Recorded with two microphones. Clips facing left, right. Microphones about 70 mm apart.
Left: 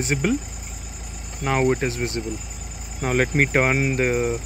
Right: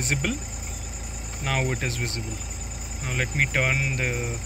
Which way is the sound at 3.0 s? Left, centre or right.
Left.